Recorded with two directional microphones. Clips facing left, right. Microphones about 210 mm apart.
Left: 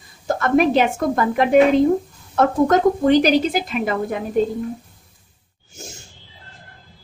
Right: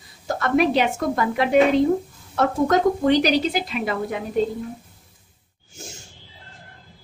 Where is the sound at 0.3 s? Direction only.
50° left (ahead or behind).